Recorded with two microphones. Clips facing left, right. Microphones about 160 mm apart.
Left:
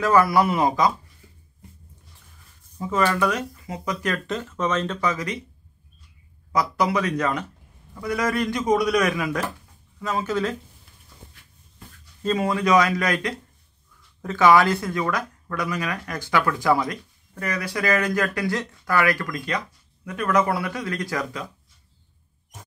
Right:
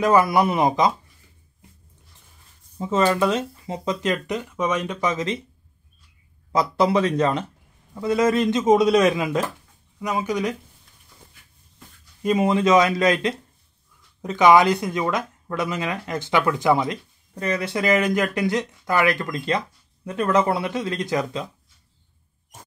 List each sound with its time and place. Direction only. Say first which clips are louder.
0.0 s speech: right 1 dB; 20° right (ahead or behind)
2.8 s speech: right 2 dB; 25° right (ahead or behind)
6.5 s speech: right 3 dB; 25° right (ahead or behind)
12.2 s speech: right 4 dB; 15° right (ahead or behind)